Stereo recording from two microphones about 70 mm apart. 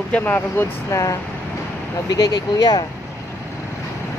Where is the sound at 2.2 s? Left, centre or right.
Left.